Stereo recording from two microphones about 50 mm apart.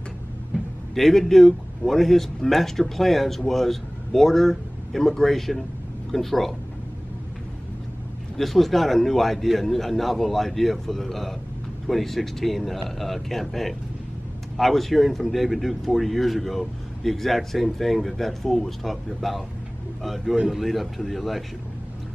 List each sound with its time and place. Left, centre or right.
0.5 s a sound: centre
0.9 s a man's voice: centre
8.4 s a man's voice: centre